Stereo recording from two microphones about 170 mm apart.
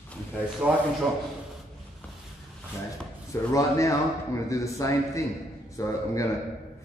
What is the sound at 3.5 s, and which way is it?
A man's voice, 20° left (ahead or behind).